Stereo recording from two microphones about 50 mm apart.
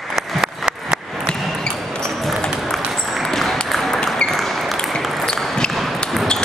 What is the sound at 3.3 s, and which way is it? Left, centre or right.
Applause, centre.